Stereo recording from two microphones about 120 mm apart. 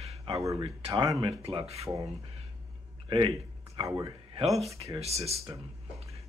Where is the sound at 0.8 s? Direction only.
35° right (ahead or behind).